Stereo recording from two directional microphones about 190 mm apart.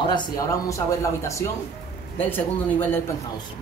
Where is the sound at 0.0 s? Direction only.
20° left (ahead or behind).